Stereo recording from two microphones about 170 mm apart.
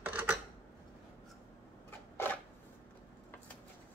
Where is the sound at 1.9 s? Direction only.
15° left (ahead or behind).